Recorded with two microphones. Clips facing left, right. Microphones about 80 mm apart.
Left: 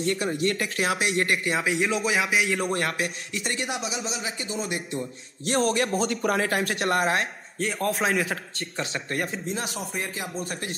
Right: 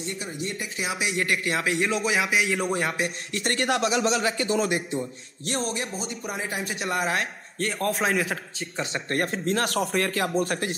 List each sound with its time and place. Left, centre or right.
0.0 s speech: left
0.9 s speech: left
1.4 s a man's voice: centre
3.3 s speech: right
5.5 s speech: left
5.9 s speech: left
7.0 s speech: left
7.5 s a man's voice: centre
9.1 s speech: right
9.8 s speech: right
10.3 s speech: right